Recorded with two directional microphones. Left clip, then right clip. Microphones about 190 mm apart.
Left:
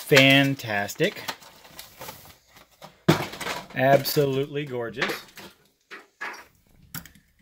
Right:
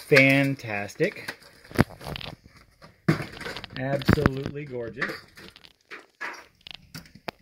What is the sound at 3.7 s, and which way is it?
Speech, 25° left (ahead or behind).